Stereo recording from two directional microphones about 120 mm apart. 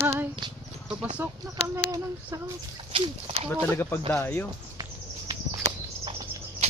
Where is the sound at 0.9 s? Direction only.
10° right (ahead or behind).